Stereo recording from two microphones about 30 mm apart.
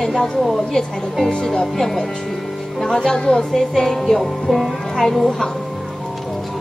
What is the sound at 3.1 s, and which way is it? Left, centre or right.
Speech, left.